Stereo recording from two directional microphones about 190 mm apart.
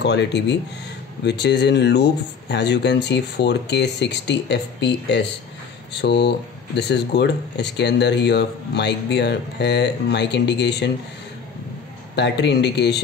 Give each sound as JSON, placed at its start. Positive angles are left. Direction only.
{"t": 0.0, "sound": "speech", "side_deg": 65}
{"t": 12.2, "sound": "speech", "side_deg": 65}